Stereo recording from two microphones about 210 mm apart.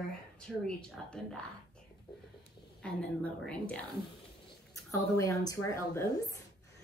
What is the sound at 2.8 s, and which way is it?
Speech, 5° left (ahead or behind).